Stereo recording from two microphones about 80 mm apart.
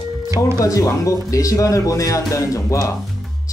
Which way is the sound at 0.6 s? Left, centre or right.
Left.